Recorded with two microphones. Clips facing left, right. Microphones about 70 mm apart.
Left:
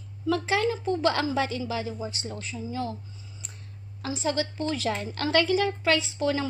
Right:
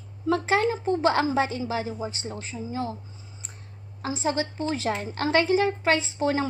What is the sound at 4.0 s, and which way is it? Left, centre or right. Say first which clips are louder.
A woman's voice: right 1 dB; right.